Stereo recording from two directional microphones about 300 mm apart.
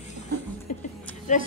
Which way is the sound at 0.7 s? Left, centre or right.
Left.